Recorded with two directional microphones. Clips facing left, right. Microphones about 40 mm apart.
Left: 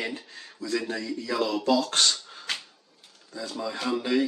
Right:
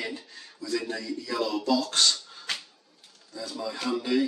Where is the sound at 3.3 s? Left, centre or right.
Left.